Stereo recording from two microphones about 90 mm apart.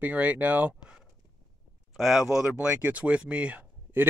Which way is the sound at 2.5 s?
20° right (ahead or behind).